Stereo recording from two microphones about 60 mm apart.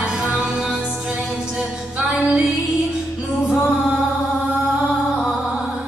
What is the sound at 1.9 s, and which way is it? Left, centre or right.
Music, centre.